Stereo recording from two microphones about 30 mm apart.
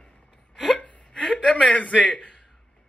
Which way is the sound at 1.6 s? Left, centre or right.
Left.